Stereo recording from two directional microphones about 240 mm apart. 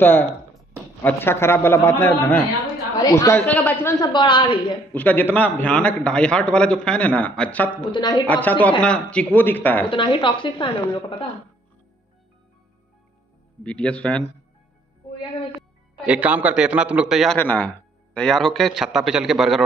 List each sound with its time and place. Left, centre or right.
0.0 s a man's voice: centre
4.9 s a man's voice: centre
7.7 s a woman's voice: centre
8.3 s a man's voice: centre
9.8 s a woman's voice: left
13.7 s a man's voice: centre
16.1 s a man's voice: centre